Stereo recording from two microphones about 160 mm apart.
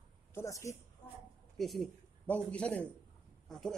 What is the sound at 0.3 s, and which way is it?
Speech, 15° left (ahead or behind).